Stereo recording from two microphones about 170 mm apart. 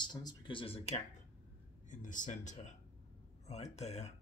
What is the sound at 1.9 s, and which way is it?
Speech, 50° left (ahead or behind).